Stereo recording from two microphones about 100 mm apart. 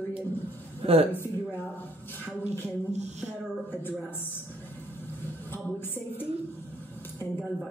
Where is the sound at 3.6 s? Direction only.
20° left (ahead or behind).